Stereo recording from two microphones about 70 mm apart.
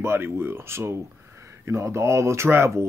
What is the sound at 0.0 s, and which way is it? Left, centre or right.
Speech, right.